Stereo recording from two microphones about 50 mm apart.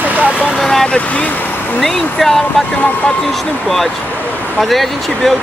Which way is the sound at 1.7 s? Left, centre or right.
Centre.